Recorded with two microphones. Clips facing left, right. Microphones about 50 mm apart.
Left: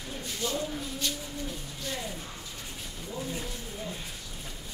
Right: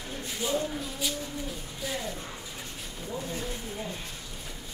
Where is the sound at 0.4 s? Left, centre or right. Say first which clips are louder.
Right 3 dB; centre.